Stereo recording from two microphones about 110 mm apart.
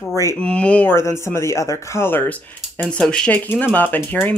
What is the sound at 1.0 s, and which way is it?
Speech, 25° left (ahead or behind).